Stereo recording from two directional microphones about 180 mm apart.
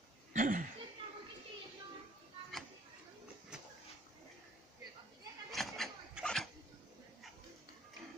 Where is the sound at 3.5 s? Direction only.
5° right (ahead or behind).